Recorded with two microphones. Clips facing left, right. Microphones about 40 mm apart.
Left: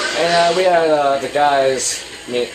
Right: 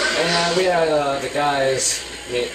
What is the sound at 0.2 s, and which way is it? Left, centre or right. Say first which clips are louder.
Speech: left 9 dB; centre.